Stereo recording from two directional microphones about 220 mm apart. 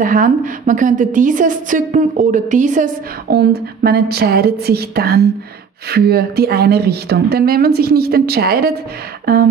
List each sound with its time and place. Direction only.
0.0 s a woman's voice: 35° right (ahead or behind)